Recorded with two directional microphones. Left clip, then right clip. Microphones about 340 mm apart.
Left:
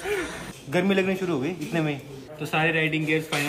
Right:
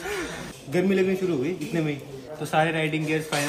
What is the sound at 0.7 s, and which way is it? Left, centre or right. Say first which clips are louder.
Speech: even; centre.